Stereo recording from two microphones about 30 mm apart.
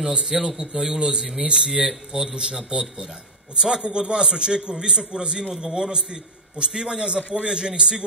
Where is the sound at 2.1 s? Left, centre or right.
Right.